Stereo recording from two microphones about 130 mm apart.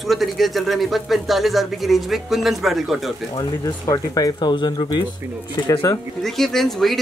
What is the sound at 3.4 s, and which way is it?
Speech, 30° left (ahead or behind).